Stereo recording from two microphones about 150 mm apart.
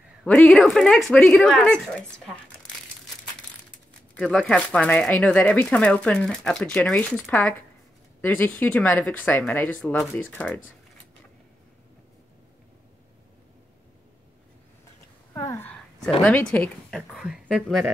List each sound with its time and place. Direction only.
0.2 s speech: 5° left (ahead or behind)
4.1 s speech: 5° left (ahead or behind)
15.3 s a sound: 20° left (ahead or behind)
16.1 s speech: centre (ahead or behind)
17.1 s speech: centre (ahead or behind)